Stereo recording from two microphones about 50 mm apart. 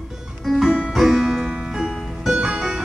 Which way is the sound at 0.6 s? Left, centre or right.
Right.